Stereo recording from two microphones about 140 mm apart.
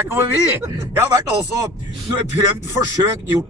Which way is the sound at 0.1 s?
20° right (ahead or behind).